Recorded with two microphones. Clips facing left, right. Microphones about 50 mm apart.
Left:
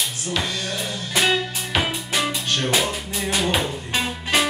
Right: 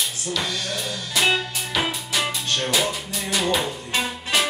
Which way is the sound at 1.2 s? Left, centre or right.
Left.